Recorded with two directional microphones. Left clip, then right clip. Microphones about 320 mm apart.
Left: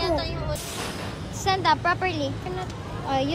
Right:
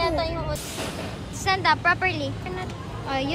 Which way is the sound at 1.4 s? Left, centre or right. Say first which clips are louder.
Right 1 dB; centre.